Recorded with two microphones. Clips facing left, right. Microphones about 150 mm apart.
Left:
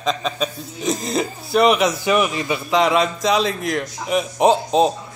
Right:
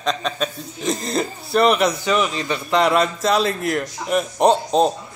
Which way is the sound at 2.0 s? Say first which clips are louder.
Left 2 dB; 15° left (ahead or behind).